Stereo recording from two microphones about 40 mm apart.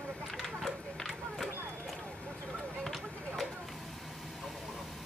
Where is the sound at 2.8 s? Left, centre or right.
Centre.